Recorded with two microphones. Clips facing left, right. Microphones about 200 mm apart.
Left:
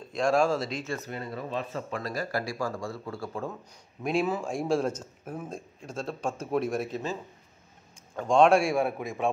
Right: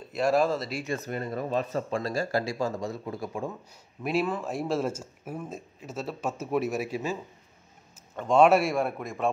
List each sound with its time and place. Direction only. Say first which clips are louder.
0.1 s speech: even; 5° right (ahead or behind)
1.0 s speech: right 4 dB; 45° right (ahead or behind)
2.0 s speech: right 3 dB; 25° right (ahead or behind)
4.0 s speech: even; 5° right (ahead or behind)
8.2 s speech: right 1 dB; 5° right (ahead or behind)